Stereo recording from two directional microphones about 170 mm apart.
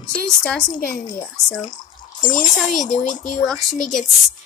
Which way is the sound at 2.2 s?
50° left (ahead or behind).